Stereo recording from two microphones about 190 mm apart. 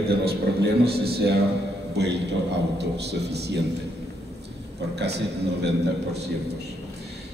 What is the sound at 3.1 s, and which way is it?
Speech, 60° right (ahead or behind).